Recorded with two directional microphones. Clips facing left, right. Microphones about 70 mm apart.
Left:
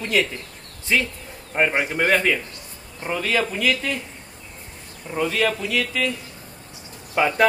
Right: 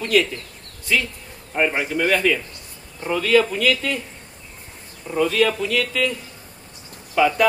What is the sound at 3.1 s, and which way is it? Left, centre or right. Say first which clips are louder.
Speech: right 5 dB; centre.